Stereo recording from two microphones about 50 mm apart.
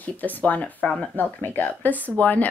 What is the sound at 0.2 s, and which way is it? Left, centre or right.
A woman's voice, left.